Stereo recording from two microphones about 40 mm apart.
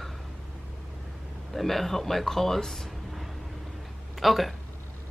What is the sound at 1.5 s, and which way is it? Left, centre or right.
Speech, centre.